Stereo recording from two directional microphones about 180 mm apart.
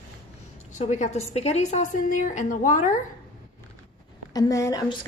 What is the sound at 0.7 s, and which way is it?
A woman's voice, 40° left (ahead or behind).